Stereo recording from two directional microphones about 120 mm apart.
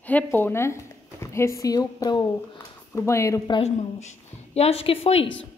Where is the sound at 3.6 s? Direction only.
65° left (ahead or behind).